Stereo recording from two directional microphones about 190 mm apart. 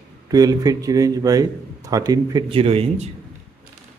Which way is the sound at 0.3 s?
20° right (ahead or behind).